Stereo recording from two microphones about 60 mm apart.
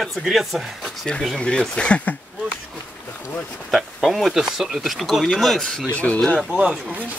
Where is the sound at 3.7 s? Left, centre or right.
Centre.